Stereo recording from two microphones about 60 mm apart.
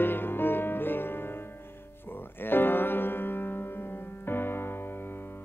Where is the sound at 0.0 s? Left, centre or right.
Left.